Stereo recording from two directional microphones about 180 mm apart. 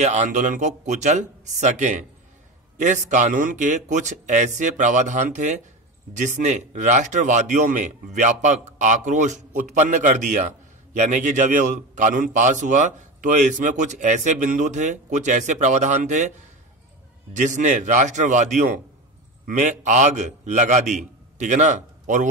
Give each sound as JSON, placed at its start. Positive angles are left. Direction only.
{"t": 0.0, "sound": "a man's voice", "side_deg": -40}